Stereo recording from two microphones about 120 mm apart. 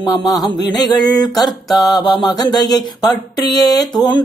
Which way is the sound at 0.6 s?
35° left (ahead or behind).